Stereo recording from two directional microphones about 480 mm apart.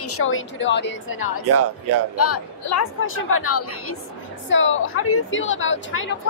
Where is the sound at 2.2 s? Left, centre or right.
Left.